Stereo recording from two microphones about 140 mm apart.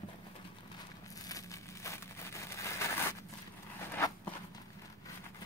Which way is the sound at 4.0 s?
25° left (ahead or behind).